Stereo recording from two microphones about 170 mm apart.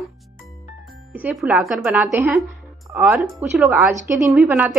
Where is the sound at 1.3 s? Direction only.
Centre (ahead or behind).